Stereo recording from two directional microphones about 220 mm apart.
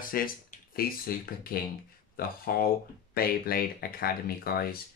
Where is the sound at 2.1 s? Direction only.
40° left (ahead or behind).